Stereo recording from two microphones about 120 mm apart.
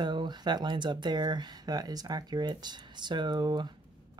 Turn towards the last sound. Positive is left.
turn(degrees=-35)  # may be behind; listen again after turning